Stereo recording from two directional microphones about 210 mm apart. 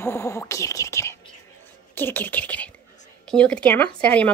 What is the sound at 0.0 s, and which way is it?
A woman's voice, 10° left (ahead or behind).